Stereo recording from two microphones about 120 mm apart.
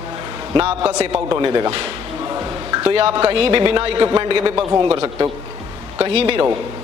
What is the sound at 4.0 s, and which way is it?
A man's voice, 40° right (ahead or behind).